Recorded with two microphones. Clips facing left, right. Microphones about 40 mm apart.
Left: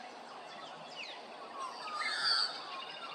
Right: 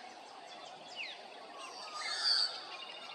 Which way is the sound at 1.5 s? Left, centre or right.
Centre.